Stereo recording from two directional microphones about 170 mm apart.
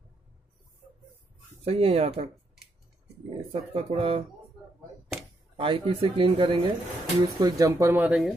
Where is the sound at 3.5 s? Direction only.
35° right (ahead or behind).